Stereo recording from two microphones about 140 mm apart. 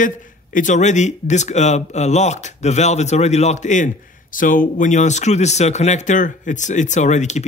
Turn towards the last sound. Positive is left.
turn(degrees=55)  # may be behind; listen again after turning